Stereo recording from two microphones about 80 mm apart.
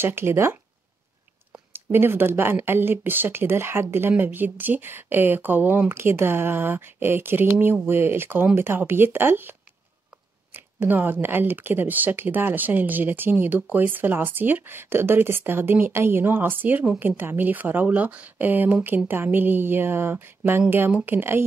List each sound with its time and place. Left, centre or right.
0.0 s speech: right
1.7 s speech: right